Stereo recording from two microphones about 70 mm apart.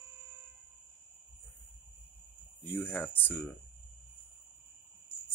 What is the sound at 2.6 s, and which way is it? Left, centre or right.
Speech, left.